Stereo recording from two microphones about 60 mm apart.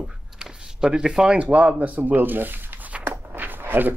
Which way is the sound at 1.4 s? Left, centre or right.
Right.